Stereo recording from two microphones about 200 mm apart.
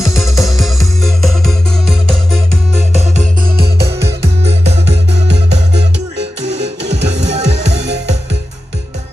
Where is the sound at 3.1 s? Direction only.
40° right (ahead or behind).